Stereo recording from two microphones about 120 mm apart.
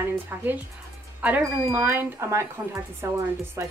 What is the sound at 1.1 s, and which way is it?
Music, 15° right (ahead or behind).